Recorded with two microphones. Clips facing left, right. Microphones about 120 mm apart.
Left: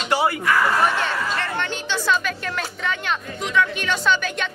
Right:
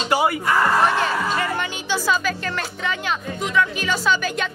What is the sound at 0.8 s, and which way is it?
Speech, centre (ahead or behind).